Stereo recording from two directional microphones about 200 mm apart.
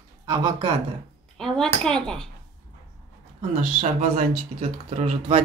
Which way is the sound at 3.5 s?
40° right (ahead or behind).